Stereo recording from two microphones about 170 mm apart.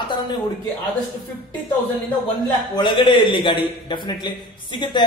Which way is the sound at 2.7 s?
30° left (ahead or behind).